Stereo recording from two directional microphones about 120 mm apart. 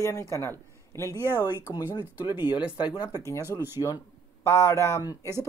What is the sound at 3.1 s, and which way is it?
Speech, 25° left (ahead or behind).